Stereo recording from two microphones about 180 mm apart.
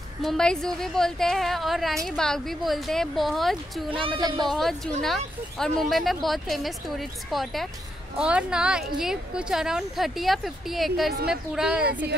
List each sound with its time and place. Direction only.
0.2 s a woman's voice: centre (ahead or behind)
3.9 s speech: 25° right (ahead or behind)
4.5 s a woman's voice: centre (ahead or behind)